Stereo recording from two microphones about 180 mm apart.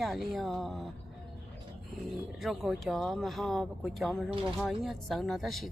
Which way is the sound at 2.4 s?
Centre (ahead or behind).